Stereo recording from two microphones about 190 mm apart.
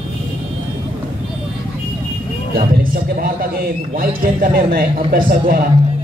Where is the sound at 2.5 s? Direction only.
50° right (ahead or behind).